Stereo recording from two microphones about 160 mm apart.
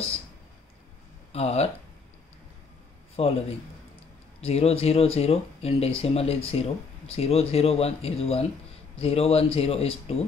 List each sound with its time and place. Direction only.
1.3 s speech: 40° left (ahead or behind)
3.2 s speech: 35° left (ahead or behind)
4.4 s speech: 40° left (ahead or behind)